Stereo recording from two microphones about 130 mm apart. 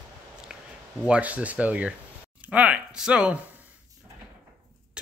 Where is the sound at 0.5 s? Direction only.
5° right (ahead or behind).